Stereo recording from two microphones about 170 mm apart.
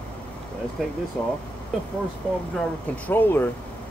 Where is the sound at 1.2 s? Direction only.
5° left (ahead or behind).